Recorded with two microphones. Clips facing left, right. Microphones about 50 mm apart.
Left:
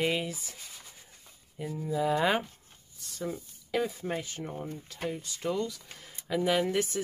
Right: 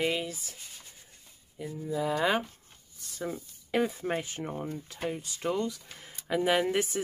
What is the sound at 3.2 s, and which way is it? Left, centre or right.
Speech, right.